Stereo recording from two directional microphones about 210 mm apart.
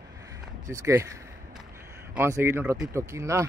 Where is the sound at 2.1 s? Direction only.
10° right (ahead or behind).